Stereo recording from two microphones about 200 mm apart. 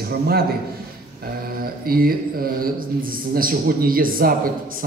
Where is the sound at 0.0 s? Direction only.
50° right (ahead or behind).